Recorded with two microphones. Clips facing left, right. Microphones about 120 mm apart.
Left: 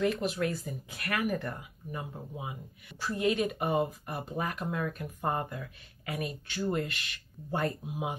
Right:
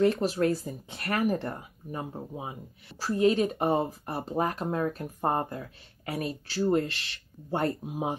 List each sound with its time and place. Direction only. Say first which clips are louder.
0.0 s speech: right 5 dB; 35° right (ahead or behind)
7.8 s speech: right 4 dB; 40° right (ahead or behind)